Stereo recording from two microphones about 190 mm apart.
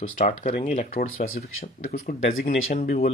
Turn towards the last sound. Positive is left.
turn(degrees=45)  # may be behind; listen again after turning